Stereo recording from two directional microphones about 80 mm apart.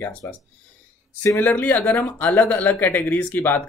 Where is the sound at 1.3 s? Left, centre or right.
Left.